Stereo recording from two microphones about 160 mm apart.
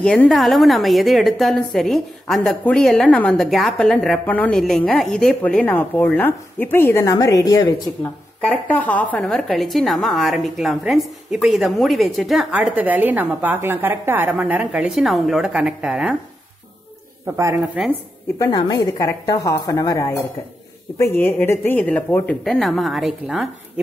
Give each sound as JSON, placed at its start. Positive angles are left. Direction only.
{"t": 0.0, "sound": "a woman's voice", "side_deg": 5}
{"t": 8.5, "sound": "a woman's voice", "side_deg": 10}
{"t": 17.8, "sound": "a woman's voice", "side_deg": -5}
{"t": 18.4, "sound": "a woman's voice", "side_deg": 25}